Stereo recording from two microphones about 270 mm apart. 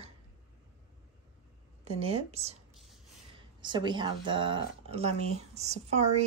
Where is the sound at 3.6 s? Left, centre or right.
Centre.